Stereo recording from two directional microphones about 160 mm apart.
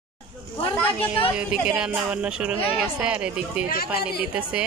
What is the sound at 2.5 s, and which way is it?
Speech, 35° left (ahead or behind).